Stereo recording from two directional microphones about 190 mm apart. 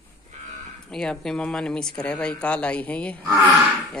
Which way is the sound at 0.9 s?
5° left (ahead or behind).